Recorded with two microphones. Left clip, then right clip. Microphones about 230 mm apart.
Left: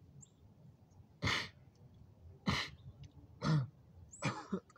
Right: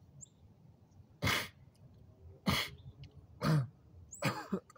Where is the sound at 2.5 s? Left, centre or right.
Right.